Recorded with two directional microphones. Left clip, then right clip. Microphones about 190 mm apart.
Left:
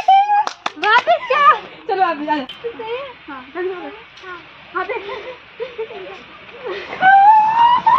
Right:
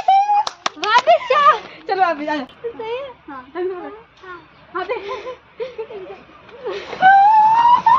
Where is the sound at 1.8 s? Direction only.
5° right (ahead or behind).